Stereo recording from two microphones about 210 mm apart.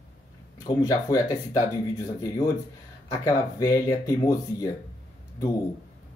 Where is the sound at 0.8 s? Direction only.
15° left (ahead or behind).